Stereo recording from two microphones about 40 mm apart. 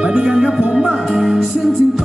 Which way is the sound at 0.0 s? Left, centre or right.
Right.